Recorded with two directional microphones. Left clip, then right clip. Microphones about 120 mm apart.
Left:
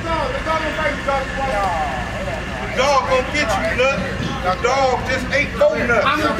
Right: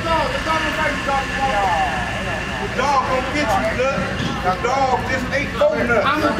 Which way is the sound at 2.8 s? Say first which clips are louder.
Left 2 dB; 15° left (ahead or behind).